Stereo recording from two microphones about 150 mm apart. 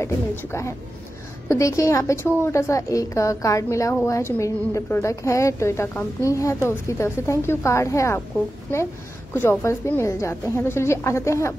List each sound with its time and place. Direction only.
0.0 s a woman's voice: 20° left (ahead or behind)
9.3 s a woman's voice: 15° left (ahead or behind)